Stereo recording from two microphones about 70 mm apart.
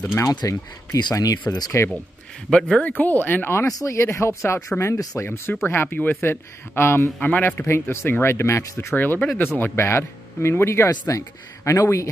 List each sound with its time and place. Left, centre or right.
0.0 s speech: left
0.3 s speech: left
1.1 s speech: left
1.8 s speech: left
2.5 s speech: centre
3.6 s speech: left
7.2 s speech: centre
7.9 s speech: left
8.9 s speech: left
9.6 s speech: left